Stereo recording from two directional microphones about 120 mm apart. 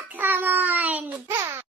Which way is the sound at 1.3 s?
25° right (ahead or behind).